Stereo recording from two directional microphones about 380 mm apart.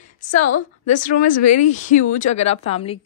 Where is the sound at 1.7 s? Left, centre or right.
Centre.